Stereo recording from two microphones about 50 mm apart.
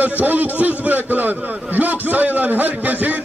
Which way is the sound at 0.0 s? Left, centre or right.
Right.